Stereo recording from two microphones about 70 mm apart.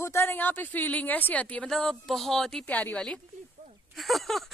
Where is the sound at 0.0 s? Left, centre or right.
Left; by 1.7 s centre.